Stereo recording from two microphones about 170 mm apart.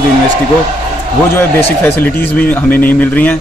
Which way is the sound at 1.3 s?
10° left (ahead or behind).